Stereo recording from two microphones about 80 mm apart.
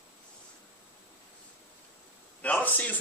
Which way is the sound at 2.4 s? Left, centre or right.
Centre.